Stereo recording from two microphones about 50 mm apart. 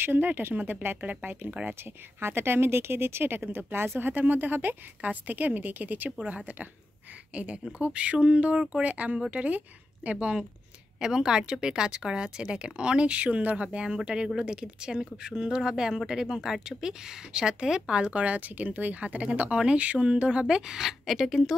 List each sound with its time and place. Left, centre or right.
0.0 s speech: right
2.1 s speech: right
11.0 s speech: centre